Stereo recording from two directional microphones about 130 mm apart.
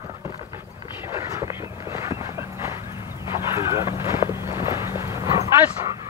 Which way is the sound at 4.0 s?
20° right (ahead or behind).